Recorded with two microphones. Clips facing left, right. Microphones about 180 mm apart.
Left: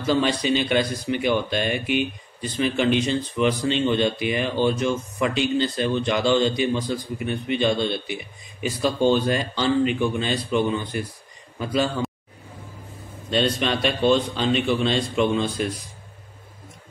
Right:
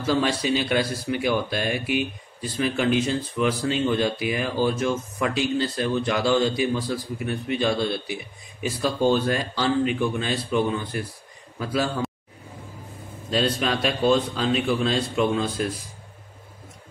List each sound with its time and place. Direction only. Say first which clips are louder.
0.1 s a man's voice: left 2 dB; 5° right (ahead or behind)
13.3 s speech: left 1 dB; centre (ahead or behind)